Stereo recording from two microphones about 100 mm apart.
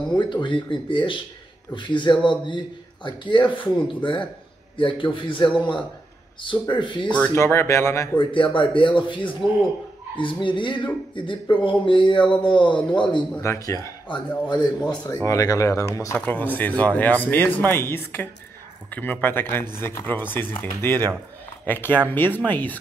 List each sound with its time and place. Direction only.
0.2 s a man's voice: 55° left (ahead or behind)
7.3 s speech: 25° left (ahead or behind)
8.2 s a man's voice: 55° left (ahead or behind)
13.4 s speech: 30° left (ahead or behind)
14.0 s a man's voice: 50° left (ahead or behind)
15.2 s speech: 35° left (ahead or behind)
16.3 s speech: 20° left (ahead or behind)